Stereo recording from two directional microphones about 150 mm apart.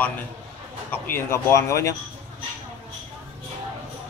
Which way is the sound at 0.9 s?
15° left (ahead or behind).